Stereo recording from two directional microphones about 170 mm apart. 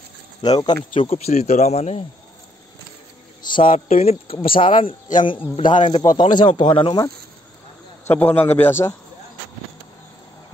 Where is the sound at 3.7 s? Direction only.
40° left (ahead or behind).